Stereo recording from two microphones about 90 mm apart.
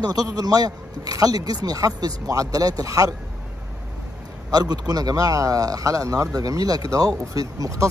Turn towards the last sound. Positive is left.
turn(degrees=-40)  # may be behind; listen again after turning